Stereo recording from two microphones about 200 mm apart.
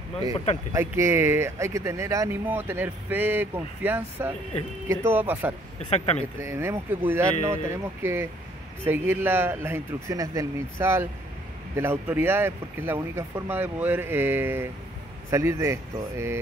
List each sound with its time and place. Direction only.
0.7 s speech: 15° right (ahead or behind)
5.9 s speech: 30° left (ahead or behind)
6.4 s speech: 15° right (ahead or behind)